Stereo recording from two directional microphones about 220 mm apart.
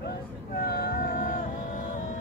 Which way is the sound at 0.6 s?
45° left (ahead or behind).